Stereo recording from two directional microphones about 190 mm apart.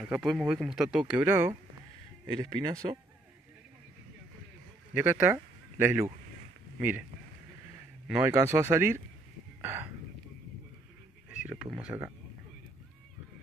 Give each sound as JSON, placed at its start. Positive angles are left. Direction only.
{"t": 0.0, "sound": "speech", "side_deg": -5}
{"t": 2.6, "sound": "speech", "side_deg": -20}
{"t": 4.9, "sound": "speech", "side_deg": -10}
{"t": 8.1, "sound": "speech", "side_deg": -15}
{"t": 11.2, "sound": "a sound", "side_deg": -5}